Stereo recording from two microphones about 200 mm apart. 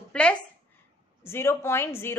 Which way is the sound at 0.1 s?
5° left (ahead or behind).